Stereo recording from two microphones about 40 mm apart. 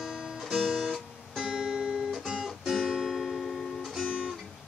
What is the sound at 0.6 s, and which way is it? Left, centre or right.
Guitar, centre.